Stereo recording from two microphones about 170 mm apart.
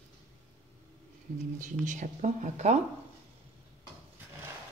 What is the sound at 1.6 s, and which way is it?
Speech, 45° right (ahead or behind).